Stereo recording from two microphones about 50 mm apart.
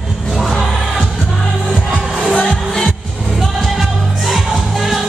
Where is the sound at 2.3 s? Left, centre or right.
Left.